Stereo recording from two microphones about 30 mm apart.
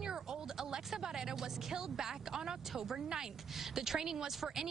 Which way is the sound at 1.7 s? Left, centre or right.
Centre.